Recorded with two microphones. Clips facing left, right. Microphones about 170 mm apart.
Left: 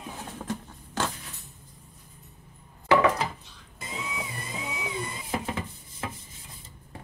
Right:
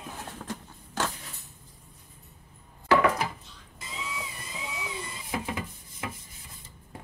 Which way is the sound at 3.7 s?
55° left (ahead or behind).